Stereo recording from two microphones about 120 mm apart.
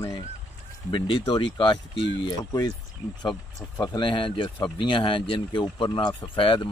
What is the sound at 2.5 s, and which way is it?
Speech, 30° left (ahead or behind).